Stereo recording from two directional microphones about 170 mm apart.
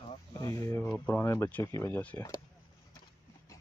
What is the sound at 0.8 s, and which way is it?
Speech, 5° left (ahead or behind).